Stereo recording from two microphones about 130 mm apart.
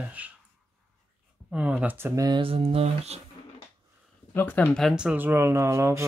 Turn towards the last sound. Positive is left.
turn(degrees=-20)  # may be behind; listen again after turning